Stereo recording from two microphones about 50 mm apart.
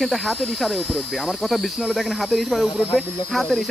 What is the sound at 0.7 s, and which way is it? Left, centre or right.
Speech, right.